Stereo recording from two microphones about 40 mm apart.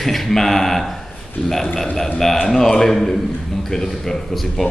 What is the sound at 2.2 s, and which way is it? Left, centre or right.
A man's voice, centre.